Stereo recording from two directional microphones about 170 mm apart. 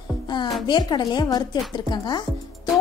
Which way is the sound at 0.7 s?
25° left (ahead or behind).